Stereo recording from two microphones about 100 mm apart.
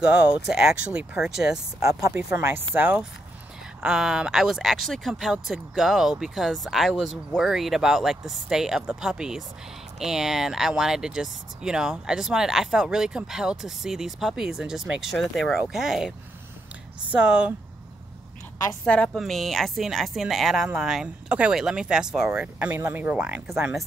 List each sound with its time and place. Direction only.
0.0 s speech: 10° right (ahead or behind)
1.8 s speech: 35° right (ahead or behind)
2.1 s speech: 25° right (ahead or behind)
3.8 s speech: 5° right (ahead or behind)
17.1 s speech: 10° right (ahead or behind)
19.1 s speech: centre (ahead or behind); by 23.4 s 15° right (ahead or behind)